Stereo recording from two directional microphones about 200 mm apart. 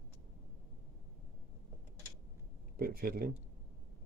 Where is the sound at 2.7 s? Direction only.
50° right (ahead or behind).